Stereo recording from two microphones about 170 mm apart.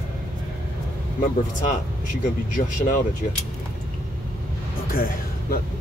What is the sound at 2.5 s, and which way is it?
Speech, 50° left (ahead or behind).